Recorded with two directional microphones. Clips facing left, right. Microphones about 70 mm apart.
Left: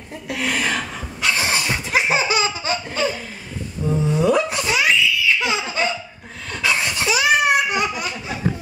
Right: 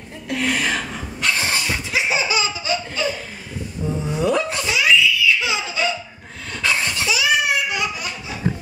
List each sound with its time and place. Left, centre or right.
0.3 s a sound: centre
1.9 s laughter: left
3.8 s a sound: centre
4.6 s baby laughter: left
6.6 s laughter: centre
7.1 s laughter: left